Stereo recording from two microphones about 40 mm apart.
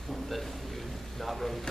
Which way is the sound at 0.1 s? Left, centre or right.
Centre.